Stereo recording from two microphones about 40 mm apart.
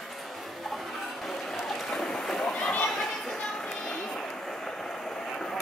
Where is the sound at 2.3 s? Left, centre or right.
Centre.